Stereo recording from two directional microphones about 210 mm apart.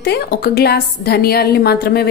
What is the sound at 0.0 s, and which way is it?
A woman's voice, 50° left (ahead or behind).